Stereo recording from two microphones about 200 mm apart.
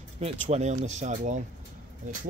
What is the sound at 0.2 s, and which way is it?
Speech, 35° right (ahead or behind).